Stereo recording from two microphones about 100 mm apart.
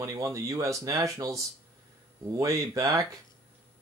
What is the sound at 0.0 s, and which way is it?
Speech, 35° right (ahead or behind).